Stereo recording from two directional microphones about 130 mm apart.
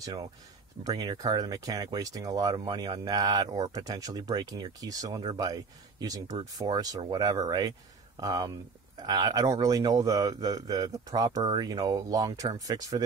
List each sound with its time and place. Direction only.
0.0 s speech: 30° right (ahead or behind)